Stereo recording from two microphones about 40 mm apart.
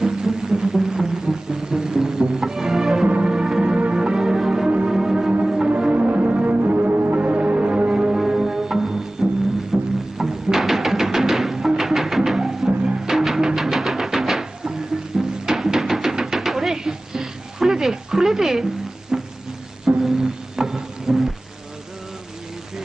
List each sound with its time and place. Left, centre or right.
0.0 s music: centre
3.1 s music: right
5.9 s music: right; by 12.6 s centre
12.6 s music: centre
13.1 s music: centre
16.3 s a sound: centre
20.0 s music: centre